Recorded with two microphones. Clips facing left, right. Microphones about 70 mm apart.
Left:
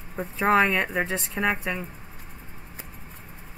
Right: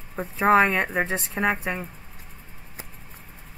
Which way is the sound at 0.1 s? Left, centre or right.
Centre.